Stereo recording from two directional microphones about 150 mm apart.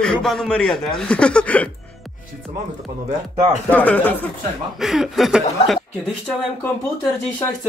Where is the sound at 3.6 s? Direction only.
10° left (ahead or behind).